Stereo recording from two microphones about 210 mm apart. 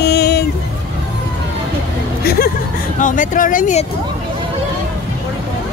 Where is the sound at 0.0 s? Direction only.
50° left (ahead or behind).